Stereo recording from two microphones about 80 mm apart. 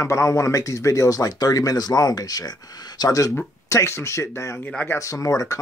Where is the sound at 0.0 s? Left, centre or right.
Left.